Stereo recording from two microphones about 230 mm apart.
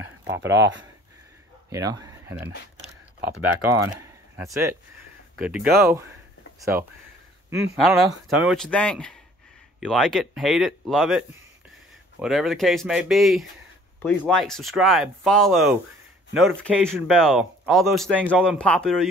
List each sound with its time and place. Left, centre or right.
0.2 s speech: right
1.7 s speech: centre
3.9 s speech: centre
7.7 s speech: centre